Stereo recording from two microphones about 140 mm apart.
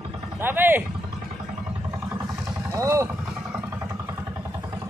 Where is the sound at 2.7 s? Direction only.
20° right (ahead or behind).